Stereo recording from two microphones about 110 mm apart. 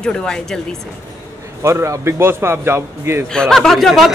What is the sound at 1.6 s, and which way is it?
A man's voice, 25° right (ahead or behind).